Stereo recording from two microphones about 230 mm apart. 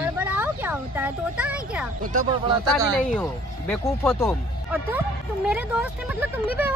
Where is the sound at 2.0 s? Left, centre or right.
Right.